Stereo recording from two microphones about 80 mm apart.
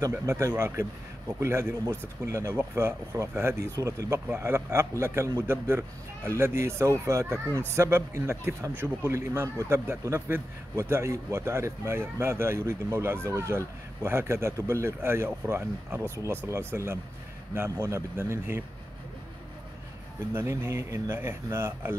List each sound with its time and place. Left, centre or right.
0.0 s a man's voice: right
20.3 s a man's voice: right